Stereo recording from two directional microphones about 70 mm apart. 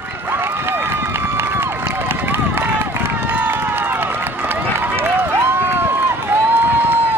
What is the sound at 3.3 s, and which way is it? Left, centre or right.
Run, right.